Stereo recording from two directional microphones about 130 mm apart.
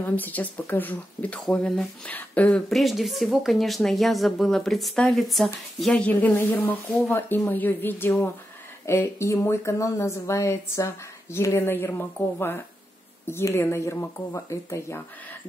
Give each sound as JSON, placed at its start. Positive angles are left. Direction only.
{"t": 0.0, "sound": "speech", "side_deg": 15}